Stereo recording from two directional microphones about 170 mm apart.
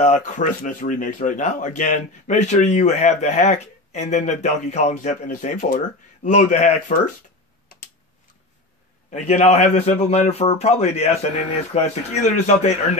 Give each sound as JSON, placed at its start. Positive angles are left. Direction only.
{"t": 0.0, "sound": "speech", "side_deg": 45}
{"t": 9.1, "sound": "a man's voice", "side_deg": 40}